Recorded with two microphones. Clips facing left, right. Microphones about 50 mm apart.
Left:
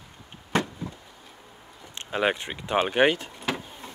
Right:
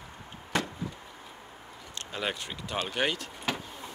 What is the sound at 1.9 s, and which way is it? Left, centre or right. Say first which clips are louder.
Speech: left 8 dB; left.